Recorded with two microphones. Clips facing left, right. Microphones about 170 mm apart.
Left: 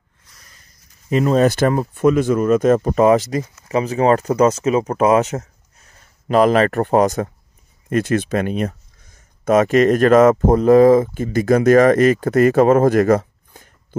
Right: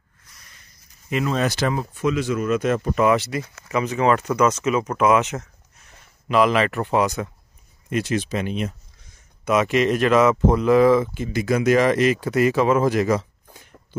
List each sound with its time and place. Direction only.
1.1 s speech: 40° left (ahead or behind)